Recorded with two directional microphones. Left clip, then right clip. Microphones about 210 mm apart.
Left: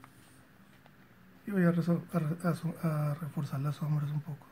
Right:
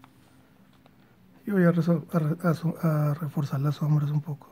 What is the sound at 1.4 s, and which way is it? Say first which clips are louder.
Speech: right 7 dB; 40° right (ahead or behind).